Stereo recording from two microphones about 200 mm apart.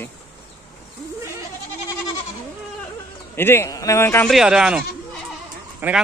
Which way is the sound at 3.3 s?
10° left (ahead or behind).